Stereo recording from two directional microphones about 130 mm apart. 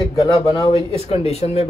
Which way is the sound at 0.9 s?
50° left (ahead or behind).